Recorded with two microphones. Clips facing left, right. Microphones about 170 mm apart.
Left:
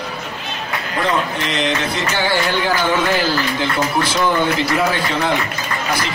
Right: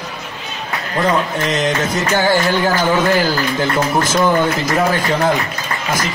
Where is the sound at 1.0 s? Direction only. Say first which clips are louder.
Right 3 dB; 45° right (ahead or behind).